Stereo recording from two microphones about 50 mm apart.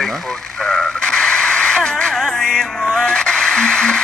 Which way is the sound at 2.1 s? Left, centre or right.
Centre.